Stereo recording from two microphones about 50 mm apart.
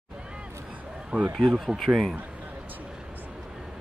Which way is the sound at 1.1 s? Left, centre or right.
Right.